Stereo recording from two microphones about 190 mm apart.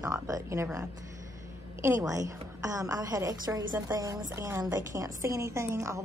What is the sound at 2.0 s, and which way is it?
A woman's voice, 20° right (ahead or behind).